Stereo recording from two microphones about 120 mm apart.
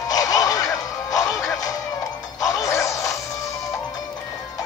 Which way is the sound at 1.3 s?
5° left (ahead or behind).